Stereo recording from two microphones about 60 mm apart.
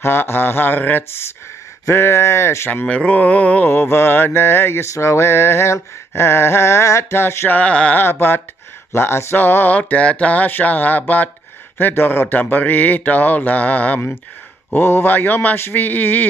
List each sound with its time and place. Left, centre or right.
0.0 s a man's voice: left
1.9 s a sound: left
2.7 s speech: left
3.6 s a man's voice: left
4.9 s a sound: left
7.4 s speech: left
7.9 s a man's voice: left
9.8 s speech: left
14.7 s a man's voice: left